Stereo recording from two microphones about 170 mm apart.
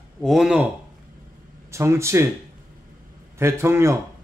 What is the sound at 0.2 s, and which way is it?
Speech, centre (ahead or behind).